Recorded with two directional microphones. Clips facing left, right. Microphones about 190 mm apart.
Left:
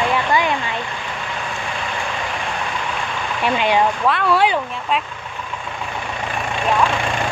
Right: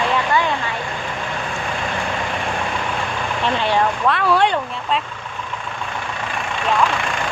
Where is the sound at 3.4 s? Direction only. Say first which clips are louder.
Left 2 dB; 15° left (ahead or behind).